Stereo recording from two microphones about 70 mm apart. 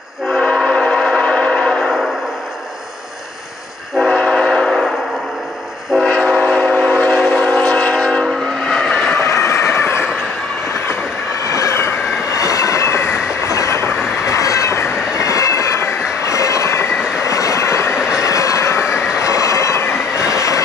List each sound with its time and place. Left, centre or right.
0.3 s train: centre
4.0 s train: centre
5.9 s train: centre
8.7 s vehicle: centre
9.1 s train: left
11.4 s train: left
17.9 s train: centre
18.2 s train: left